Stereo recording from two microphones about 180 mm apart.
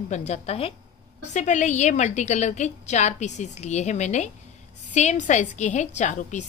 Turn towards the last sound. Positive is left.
turn(degrees=40)  # may be behind; listen again after turning